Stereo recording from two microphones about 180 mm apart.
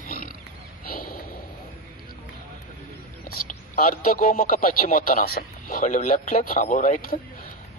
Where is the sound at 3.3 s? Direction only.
50° left (ahead or behind).